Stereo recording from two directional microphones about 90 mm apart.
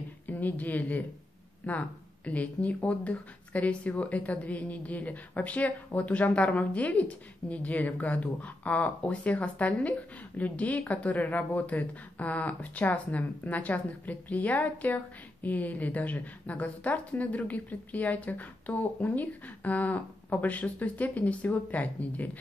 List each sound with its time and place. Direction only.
0.3 s a woman's voice: 20° left (ahead or behind)